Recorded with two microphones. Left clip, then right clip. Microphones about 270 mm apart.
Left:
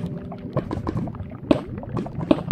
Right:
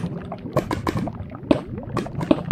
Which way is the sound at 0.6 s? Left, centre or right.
Right.